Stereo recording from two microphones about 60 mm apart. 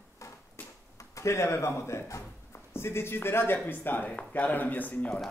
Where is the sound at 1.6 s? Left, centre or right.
Left.